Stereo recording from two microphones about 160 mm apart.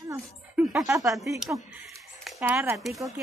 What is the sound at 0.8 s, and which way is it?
Speech, 20° right (ahead or behind).